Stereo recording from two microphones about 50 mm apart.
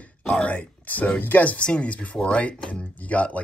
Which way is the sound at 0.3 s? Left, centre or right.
Left.